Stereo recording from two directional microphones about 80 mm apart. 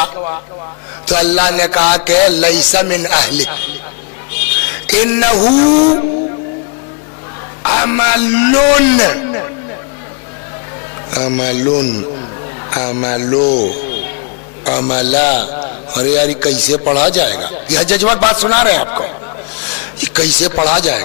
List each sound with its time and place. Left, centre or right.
0.0 s a sound: left
1.0 s music: centre
7.6 s music: centre
9.2 s speech: left
11.1 s music: centre
12.6 s a man's voice: centre
14.6 s music: centre
19.6 s a sound: centre
20.5 s music: centre